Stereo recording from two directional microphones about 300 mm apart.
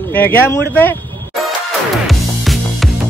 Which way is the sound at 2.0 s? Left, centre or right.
Centre.